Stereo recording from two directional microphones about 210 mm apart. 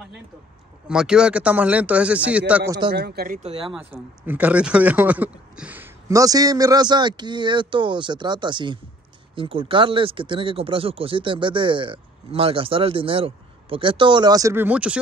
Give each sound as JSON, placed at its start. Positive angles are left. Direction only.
{"t": 0.8, "sound": "speech", "side_deg": -5}
{"t": 2.9, "sound": "speech", "side_deg": -50}
{"t": 3.7, "sound": "speech", "side_deg": -10}